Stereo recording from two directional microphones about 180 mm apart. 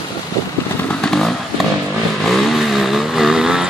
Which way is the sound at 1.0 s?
5° left (ahead or behind).